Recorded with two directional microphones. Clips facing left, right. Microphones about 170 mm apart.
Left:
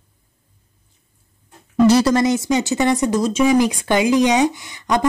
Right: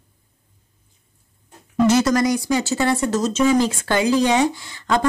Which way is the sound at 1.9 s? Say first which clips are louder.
Left 2 dB; 35° left (ahead or behind).